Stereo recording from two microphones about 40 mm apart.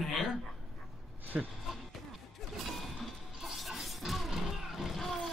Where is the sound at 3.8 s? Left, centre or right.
Centre.